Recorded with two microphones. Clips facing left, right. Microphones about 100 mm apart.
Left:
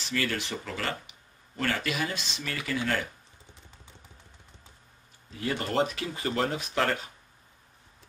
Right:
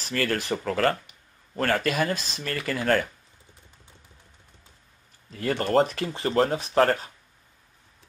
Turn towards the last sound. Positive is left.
turn(degrees=-40)  # may be behind; listen again after turning